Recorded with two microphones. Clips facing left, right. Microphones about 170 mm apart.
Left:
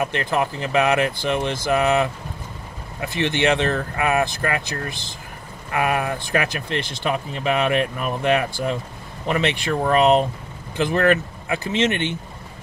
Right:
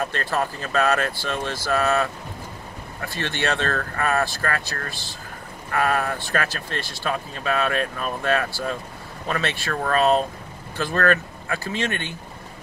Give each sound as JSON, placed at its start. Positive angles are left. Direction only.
{"t": 0.0, "sound": "speech", "side_deg": 15}